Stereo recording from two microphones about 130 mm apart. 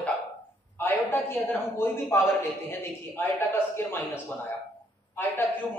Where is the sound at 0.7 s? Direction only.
15° left (ahead or behind).